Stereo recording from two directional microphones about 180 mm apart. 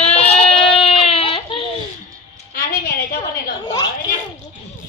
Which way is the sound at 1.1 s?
35° left (ahead or behind).